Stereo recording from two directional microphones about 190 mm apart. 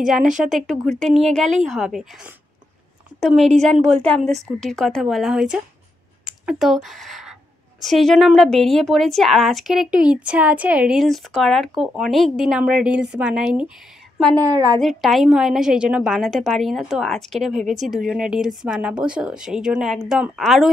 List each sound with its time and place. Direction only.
0.5 s a woman's voice: centre (ahead or behind)
14.4 s a woman's voice: 20° right (ahead or behind)
14.8 s a woman's voice: centre (ahead or behind)